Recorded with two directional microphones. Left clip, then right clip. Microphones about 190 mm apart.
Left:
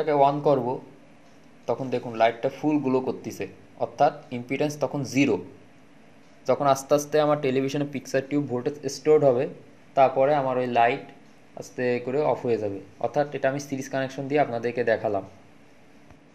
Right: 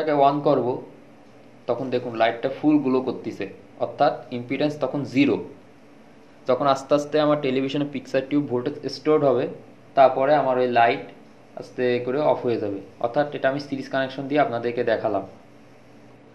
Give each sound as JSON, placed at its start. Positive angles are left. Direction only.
{"t": 0.0, "sound": "speech", "side_deg": 55}
{"t": 6.4, "sound": "speech", "side_deg": 55}